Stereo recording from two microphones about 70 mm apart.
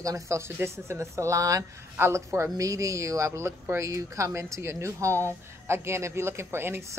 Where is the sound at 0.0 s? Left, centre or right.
Right.